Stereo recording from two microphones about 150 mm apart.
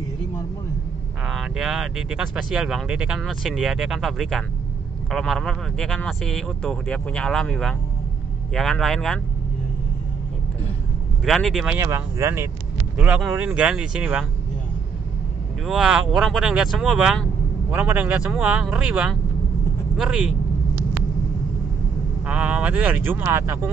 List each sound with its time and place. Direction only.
1.2 s speech: centre (ahead or behind)
11.2 s speech: centre (ahead or behind)
11.7 s speech: 20° right (ahead or behind)
15.6 s speech: 5° right (ahead or behind)
22.2 s speech: 10° right (ahead or behind)